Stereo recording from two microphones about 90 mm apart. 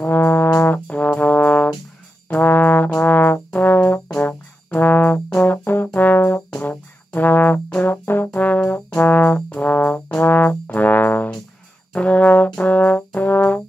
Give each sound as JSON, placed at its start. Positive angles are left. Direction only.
{"t": 0.0, "sound": "trombone", "side_deg": 20}
{"t": 5.9, "sound": "brass instrument", "side_deg": 20}
{"t": 6.6, "sound": "trombone", "side_deg": 20}
{"t": 11.9, "sound": "brass instrument", "side_deg": 15}